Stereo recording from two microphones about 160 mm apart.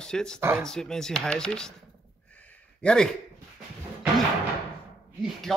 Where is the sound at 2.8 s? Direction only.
5° left (ahead or behind).